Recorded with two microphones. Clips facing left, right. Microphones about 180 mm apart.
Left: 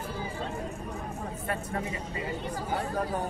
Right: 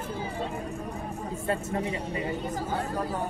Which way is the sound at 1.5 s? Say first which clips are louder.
Right 5 dB; 25° right (ahead or behind).